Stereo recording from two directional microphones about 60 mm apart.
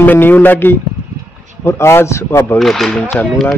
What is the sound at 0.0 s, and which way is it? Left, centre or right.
Speech, left.